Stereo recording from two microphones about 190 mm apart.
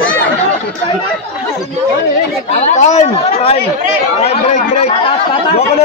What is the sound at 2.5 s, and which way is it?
Speech, 35° left (ahead or behind).